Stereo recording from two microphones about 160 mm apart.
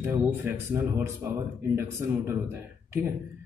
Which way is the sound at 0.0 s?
15° right (ahead or behind).